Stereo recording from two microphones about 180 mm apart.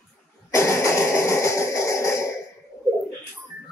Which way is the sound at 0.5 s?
15° left (ahead or behind).